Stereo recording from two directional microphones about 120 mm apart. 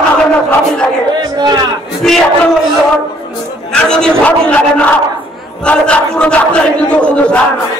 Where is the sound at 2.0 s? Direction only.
5° left (ahead or behind).